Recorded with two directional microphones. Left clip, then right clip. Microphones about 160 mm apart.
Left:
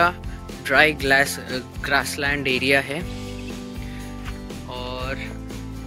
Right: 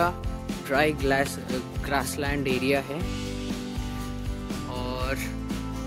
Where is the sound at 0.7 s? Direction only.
10° right (ahead or behind).